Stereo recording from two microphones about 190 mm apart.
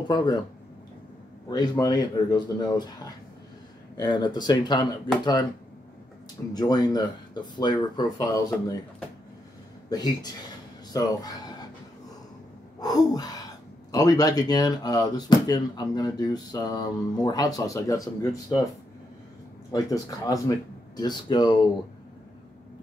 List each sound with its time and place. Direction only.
0.1 s speech: 25° left (ahead or behind)
1.5 s speech: 20° left (ahead or behind)
6.5 s speech: 20° left (ahead or behind)
9.8 s speech: 20° left (ahead or behind)
12.8 s speech: 20° left (ahead or behind)
19.7 s speech: 20° left (ahead or behind)